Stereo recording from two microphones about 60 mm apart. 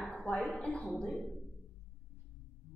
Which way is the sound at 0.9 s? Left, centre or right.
Centre.